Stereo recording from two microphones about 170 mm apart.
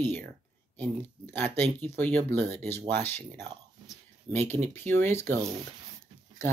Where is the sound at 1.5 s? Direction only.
10° left (ahead or behind).